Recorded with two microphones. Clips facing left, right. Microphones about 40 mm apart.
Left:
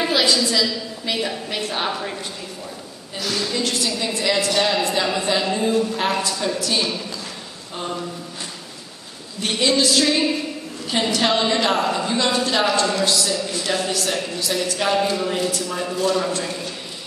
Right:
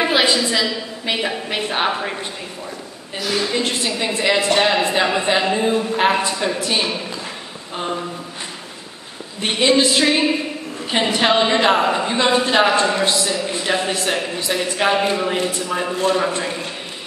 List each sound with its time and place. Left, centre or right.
0.0 s a woman's voice: right
3.3 s a woman's voice: right
9.4 s a woman's voice: right